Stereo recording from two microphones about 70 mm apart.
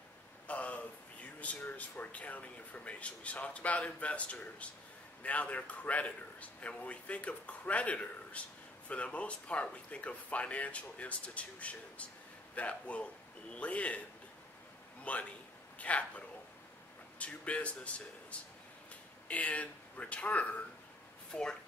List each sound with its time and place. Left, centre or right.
0.5 s a sound: centre
1.4 s a man's voice: left
15.1 s speech: centre